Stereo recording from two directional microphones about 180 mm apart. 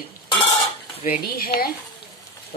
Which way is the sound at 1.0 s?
55° left (ahead or behind).